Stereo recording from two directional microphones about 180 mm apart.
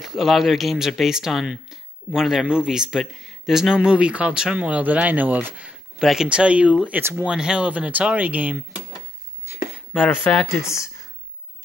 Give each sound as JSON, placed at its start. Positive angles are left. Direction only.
{"t": 0.0, "sound": "speech", "side_deg": 0}
{"t": 9.9, "sound": "speech", "side_deg": 10}